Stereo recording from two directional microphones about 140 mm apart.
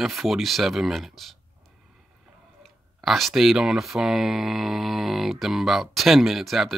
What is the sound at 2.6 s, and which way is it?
Speech, centre (ahead or behind).